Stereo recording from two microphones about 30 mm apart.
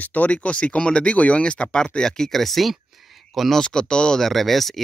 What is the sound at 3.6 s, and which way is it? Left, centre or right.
Speech, left.